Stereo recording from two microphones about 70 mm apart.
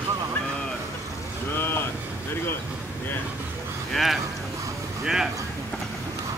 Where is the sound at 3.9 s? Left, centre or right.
Centre.